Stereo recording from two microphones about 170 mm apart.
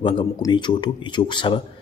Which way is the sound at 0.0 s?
30° left (ahead or behind).